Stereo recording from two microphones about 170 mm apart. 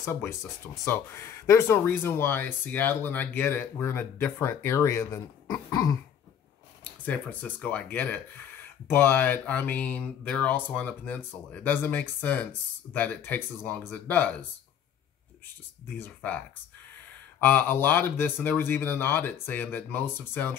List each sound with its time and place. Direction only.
0.0 s speech: 15° left (ahead or behind)
16.0 s speech: 10° left (ahead or behind)